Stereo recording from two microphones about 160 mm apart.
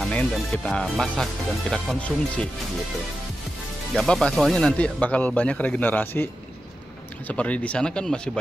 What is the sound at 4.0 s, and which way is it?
Speech, 5° left (ahead or behind).